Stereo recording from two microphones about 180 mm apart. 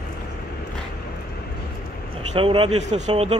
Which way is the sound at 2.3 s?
30° right (ahead or behind).